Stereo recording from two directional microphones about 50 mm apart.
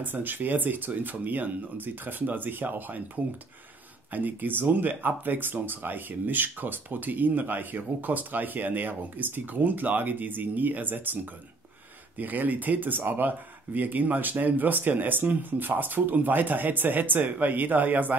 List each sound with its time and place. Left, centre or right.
0.0 s speech: right
4.1 s speech: right
12.2 s speech: right